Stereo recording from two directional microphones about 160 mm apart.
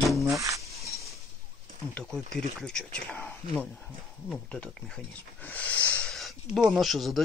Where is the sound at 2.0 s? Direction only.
5° left (ahead or behind).